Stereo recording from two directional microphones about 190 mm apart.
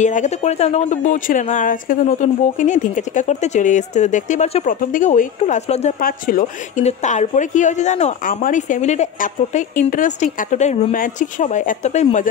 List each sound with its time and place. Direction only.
0.0 s speech: 40° left (ahead or behind)
5.9 s speech: 50° left (ahead or behind)